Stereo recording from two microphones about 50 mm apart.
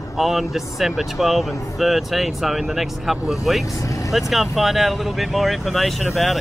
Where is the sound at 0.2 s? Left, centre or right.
Centre.